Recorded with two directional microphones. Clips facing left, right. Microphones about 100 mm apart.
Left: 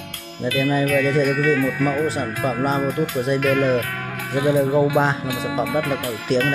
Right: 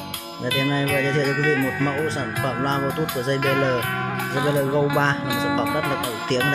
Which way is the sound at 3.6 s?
25° right (ahead or behind).